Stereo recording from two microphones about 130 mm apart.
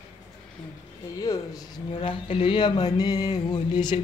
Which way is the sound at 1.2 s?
30° left (ahead or behind).